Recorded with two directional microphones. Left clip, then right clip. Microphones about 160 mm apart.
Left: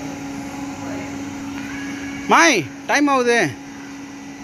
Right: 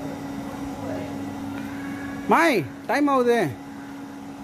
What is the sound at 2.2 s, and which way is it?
Speech, 5° right (ahead or behind).